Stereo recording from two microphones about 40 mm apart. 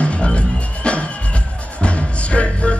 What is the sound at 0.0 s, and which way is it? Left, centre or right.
Music, left.